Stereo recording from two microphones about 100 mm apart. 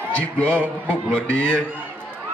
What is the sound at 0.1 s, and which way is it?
Speech, 10° left (ahead or behind).